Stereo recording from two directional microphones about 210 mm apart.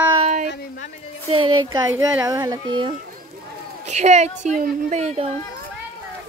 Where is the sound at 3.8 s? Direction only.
35° right (ahead or behind).